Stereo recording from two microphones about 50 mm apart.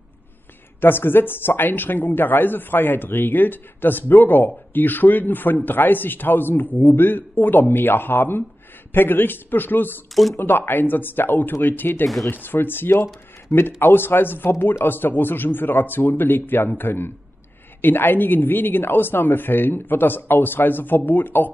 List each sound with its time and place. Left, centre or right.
0.7 s speech: left